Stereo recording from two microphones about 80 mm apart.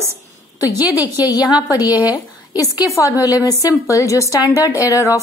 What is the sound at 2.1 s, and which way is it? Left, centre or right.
A woman's voice, left.